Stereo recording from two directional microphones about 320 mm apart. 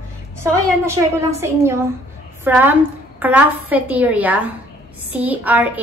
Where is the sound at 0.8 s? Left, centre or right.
Centre.